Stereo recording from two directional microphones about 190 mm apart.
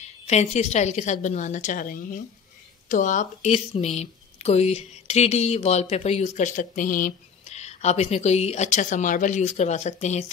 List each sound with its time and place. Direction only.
0.0 s speech: 35° left (ahead or behind)